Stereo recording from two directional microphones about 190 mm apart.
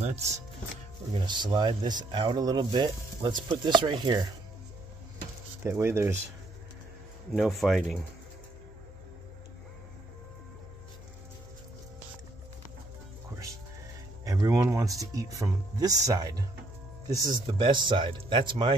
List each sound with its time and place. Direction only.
0.0 s speech: 35° right (ahead or behind)
1.1 s speech: 25° right (ahead or behind)
5.6 s speech: 10° right (ahead or behind)
7.3 s speech: centre (ahead or behind)
14.2 s speech: 20° right (ahead or behind)